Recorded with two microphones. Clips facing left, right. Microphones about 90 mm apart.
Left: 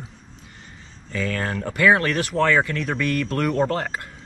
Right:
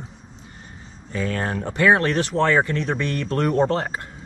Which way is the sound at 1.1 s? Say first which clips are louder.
Right 1 dB; 25° right (ahead or behind).